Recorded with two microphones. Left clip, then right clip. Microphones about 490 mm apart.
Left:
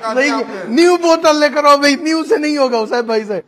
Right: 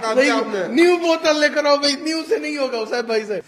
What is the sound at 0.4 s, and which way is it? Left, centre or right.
A man's voice, left.